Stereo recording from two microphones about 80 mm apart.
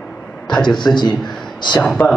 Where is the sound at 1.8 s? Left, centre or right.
Centre.